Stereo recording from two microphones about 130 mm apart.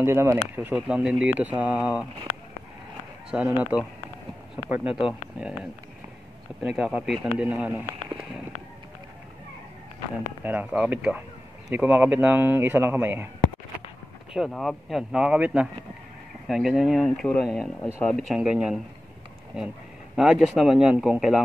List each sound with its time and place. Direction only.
0.0 s a man's voice: 20° right (ahead or behind)
3.3 s a man's voice: 10° right (ahead or behind)
10.4 s a man's voice: 15° right (ahead or behind)
14.3 s speech: centre (ahead or behind)
20.2 s speech: centre (ahead or behind)